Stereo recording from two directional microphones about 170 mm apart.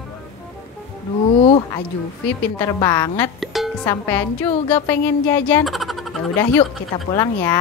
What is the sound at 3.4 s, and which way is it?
Music, centre (ahead or behind).